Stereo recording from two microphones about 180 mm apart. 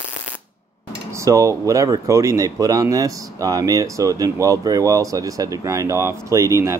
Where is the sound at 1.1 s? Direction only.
15° right (ahead or behind).